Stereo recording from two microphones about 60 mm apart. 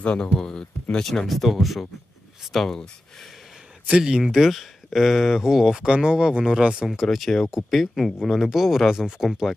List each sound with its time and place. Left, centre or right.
0.0 s speech: centre
4.0 s speech: centre
6.9 s speech: centre